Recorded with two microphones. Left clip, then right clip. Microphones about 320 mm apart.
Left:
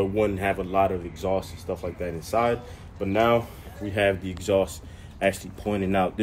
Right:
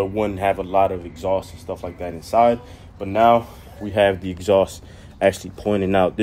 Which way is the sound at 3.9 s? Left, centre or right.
Centre.